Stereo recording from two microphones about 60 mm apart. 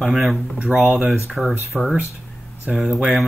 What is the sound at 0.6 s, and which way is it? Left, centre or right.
Speech, centre.